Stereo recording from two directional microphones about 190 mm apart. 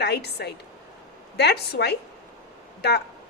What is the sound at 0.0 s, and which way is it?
A woman's voice, 60° left (ahead or behind).